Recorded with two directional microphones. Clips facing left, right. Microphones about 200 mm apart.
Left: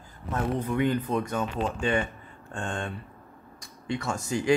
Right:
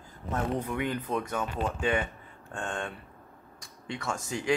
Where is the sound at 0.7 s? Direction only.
5° right (ahead or behind).